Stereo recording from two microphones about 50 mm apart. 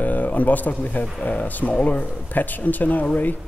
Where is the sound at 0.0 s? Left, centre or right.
Left.